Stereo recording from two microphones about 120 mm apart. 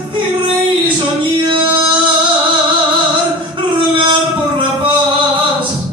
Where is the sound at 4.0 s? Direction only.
45° right (ahead or behind).